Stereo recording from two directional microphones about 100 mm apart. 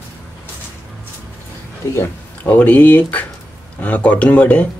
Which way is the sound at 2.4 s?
15° left (ahead or behind).